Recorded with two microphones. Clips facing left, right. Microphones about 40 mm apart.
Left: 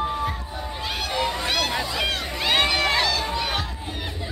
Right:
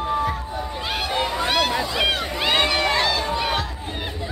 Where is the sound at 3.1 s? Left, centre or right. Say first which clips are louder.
Right 3 dB; centre.